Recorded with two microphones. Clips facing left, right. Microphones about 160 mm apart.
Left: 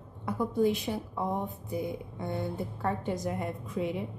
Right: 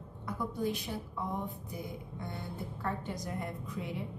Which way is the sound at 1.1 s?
55° left (ahead or behind).